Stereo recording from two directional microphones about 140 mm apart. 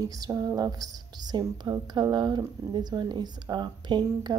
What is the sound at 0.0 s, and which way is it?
Speech, 25° right (ahead or behind).